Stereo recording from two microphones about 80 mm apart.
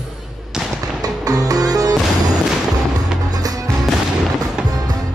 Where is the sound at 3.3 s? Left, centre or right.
Right.